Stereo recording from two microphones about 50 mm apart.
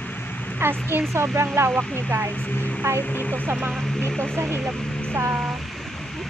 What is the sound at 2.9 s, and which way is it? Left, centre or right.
Speech, right.